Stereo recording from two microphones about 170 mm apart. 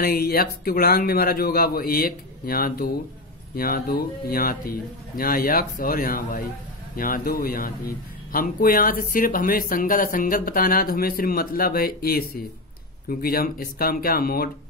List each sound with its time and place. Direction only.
0.0 s speech: 60° left (ahead or behind)